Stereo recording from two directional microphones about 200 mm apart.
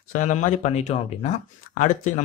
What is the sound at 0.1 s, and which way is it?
Speech, 40° left (ahead or behind).